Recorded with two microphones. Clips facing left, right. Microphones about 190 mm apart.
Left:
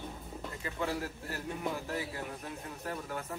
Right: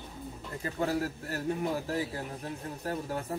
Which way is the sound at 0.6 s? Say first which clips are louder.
Right 5 dB; 40° right (ahead or behind).